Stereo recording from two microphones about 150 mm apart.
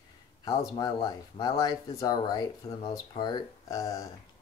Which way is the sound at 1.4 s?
25° left (ahead or behind).